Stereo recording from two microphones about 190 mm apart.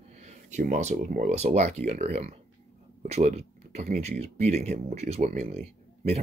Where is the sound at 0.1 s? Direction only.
35° right (ahead or behind).